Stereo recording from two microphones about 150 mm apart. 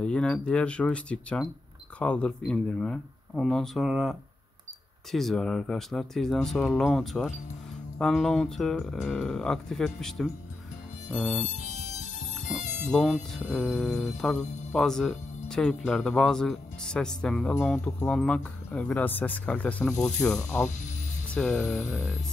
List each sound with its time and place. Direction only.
0.0 s speech: 5° left (ahead or behind)
11.4 s music: 50° left (ahead or behind)
12.9 s speech: 5° left (ahead or behind)